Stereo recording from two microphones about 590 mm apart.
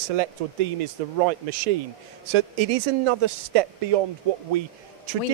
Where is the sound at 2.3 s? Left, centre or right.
Right.